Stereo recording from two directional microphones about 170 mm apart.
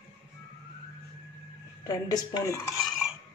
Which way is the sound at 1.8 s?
25° left (ahead or behind).